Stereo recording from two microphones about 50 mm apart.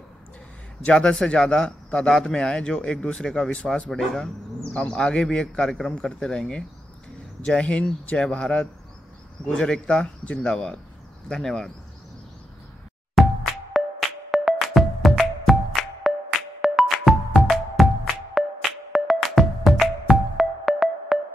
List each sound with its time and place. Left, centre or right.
0.8 s speech: centre
3.6 s speech: centre
4.7 s speech: centre
13.2 s music: centre
18.9 s music: centre